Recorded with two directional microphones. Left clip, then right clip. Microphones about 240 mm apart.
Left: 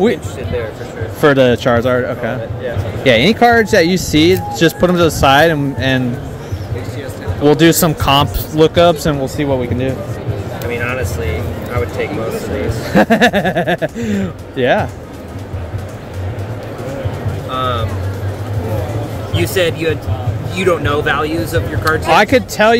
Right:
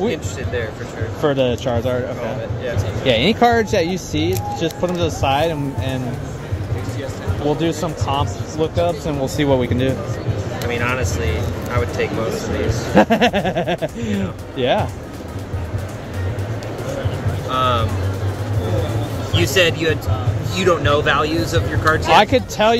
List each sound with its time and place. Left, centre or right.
1.2 s speech: left
7.4 s speech: left
9.2 s speech: centre
12.9 s speech: centre
17.5 s music: centre
19.3 s speech: centre
22.1 s speech: left